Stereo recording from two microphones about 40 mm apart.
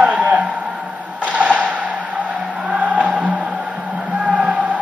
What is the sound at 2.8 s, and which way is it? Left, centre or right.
Vehicle, right.